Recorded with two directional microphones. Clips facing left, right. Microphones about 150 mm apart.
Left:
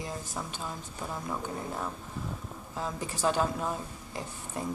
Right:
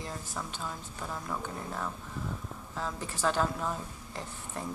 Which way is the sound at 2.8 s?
15° left (ahead or behind).